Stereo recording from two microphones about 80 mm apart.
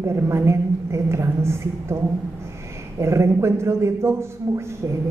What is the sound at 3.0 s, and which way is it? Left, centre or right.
A man's voice, right.